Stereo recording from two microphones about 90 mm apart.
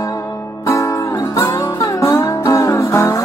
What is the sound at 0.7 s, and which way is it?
Music, 35° left (ahead or behind).